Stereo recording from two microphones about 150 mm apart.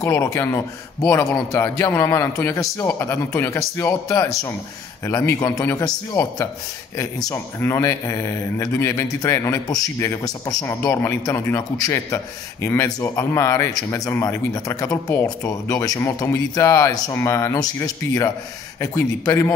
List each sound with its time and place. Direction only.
0.0 s speech: 20° left (ahead or behind)